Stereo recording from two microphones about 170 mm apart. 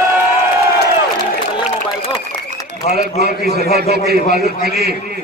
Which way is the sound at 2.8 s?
40° left (ahead or behind).